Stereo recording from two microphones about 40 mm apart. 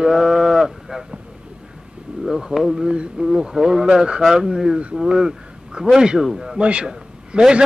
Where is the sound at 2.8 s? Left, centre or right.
Centre.